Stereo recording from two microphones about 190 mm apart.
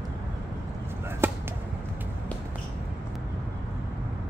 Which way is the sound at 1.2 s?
10° right (ahead or behind).